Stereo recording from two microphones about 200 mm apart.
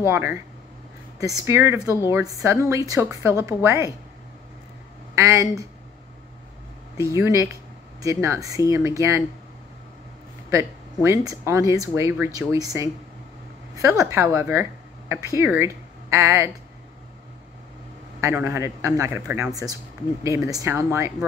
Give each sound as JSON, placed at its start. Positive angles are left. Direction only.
{"t": 0.0, "sound": "speech", "side_deg": -10}
{"t": 5.1, "sound": "speech", "side_deg": -15}
{"t": 7.0, "sound": "speech", "side_deg": -15}
{"t": 10.5, "sound": "speech", "side_deg": -15}
{"t": 18.2, "sound": "speech", "side_deg": -15}